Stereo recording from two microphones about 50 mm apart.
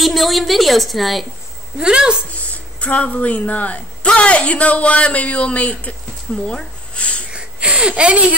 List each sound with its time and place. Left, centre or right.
0.0 s a woman's voice: centre
1.8 s a woman's voice: centre
2.3 s speech: left
7.3 s a sound: right
8.0 s speech: right